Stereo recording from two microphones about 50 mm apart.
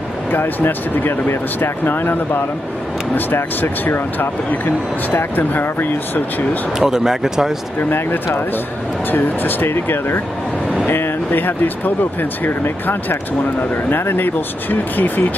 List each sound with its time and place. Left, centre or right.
0.3 s speech: left
6.8 s speech: centre
9.1 s speech: left